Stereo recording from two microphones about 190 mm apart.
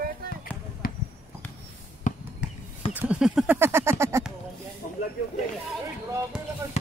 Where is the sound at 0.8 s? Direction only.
50° left (ahead or behind).